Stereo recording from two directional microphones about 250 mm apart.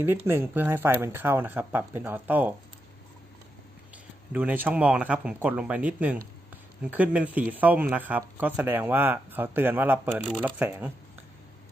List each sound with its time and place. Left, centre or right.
0.0 s speech: centre
4.3 s speech: centre